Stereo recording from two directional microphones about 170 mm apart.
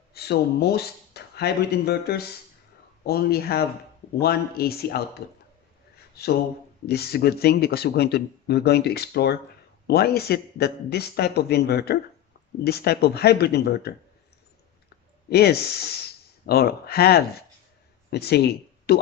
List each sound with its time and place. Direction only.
0.1 s speech: 70° left (ahead or behind)
5.9 s a sound: 65° left (ahead or behind)
6.9 s speech: 70° left (ahead or behind)
15.2 s speech: 70° left (ahead or behind)